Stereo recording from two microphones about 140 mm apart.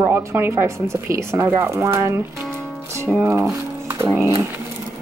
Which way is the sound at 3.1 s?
5° right (ahead or behind).